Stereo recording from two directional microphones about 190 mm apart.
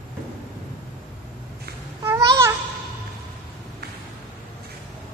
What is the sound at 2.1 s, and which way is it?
Babbling, 15° right (ahead or behind).